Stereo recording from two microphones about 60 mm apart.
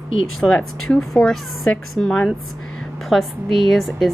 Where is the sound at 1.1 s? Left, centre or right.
Centre.